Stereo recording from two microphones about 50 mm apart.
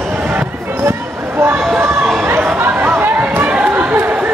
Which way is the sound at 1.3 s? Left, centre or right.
Right.